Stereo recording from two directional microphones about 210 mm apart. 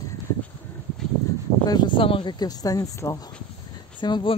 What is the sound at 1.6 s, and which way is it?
Speech, 20° left (ahead or behind).